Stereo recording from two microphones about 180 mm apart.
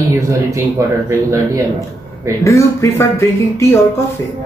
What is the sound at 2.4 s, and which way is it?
Speech, 15° left (ahead or behind).